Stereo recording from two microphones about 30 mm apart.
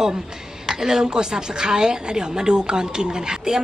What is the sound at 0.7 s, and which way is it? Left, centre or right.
A woman's voice, centre.